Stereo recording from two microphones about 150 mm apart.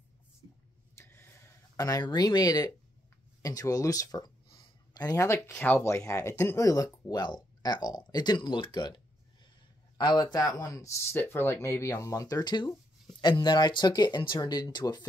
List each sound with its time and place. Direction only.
0.9 s a sound: 15° left (ahead or behind)
1.8 s speech: 25° left (ahead or behind)
5.5 s speech: 10° left (ahead or behind); by 15.0 s 30° left (ahead or behind)